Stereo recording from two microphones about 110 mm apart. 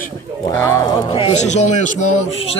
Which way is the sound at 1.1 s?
50° left (ahead or behind).